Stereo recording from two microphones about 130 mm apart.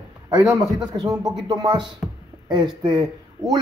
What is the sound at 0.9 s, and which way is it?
Speech, 30° right (ahead or behind).